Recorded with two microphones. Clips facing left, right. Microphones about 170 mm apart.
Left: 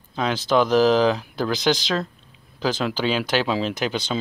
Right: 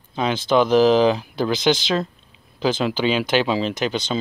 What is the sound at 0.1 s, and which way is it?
Speech, 5° right (ahead or behind).